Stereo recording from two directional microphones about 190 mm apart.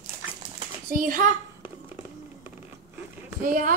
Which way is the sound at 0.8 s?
50° right (ahead or behind).